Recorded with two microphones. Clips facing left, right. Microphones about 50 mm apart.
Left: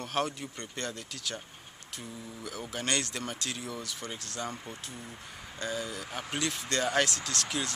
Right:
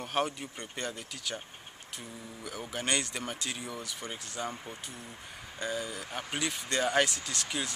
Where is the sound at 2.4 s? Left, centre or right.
Centre.